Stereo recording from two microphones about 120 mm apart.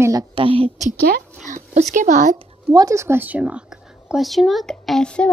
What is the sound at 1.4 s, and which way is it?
Speech, 90° right.